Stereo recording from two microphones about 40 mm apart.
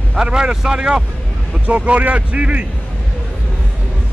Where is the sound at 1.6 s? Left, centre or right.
Right.